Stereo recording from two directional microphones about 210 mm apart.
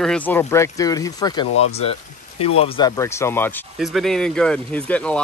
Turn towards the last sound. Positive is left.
turn(degrees=5)  # may be behind; listen again after turning